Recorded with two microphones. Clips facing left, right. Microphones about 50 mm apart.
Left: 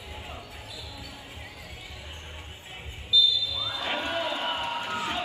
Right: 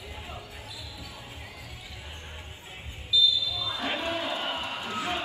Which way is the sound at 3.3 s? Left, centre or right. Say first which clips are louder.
Even; left.